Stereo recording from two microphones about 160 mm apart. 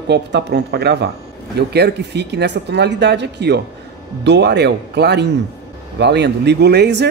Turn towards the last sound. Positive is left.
turn(degrees=-90)